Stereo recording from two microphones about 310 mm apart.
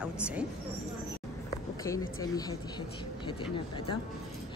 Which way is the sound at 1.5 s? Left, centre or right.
Centre.